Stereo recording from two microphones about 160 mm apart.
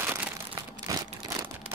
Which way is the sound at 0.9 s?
20° right (ahead or behind).